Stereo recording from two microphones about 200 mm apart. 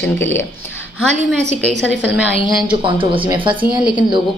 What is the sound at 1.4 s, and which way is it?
Speech, 35° right (ahead or behind).